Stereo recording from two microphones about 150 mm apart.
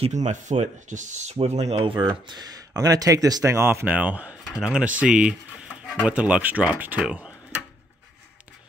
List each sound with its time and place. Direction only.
0.0 s speech: 50° right (ahead or behind); by 7.6 s 5° right (ahead or behind)